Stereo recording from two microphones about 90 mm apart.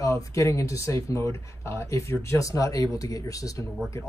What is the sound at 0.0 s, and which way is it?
Speech, 35° left (ahead or behind).